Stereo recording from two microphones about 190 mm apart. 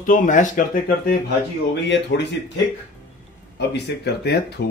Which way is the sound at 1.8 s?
65° left (ahead or behind).